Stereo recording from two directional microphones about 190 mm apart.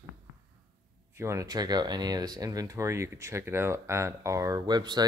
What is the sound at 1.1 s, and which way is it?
Speech, 15° right (ahead or behind).